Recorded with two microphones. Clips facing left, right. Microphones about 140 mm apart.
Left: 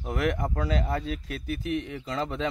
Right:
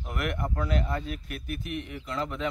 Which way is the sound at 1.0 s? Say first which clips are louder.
Left 4 dB; 90° left.